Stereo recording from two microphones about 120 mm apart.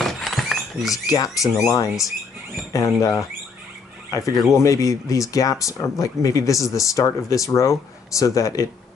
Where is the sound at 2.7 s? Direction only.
25° left (ahead or behind).